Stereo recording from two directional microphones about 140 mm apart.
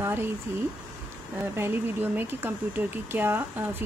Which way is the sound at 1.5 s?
15° right (ahead or behind).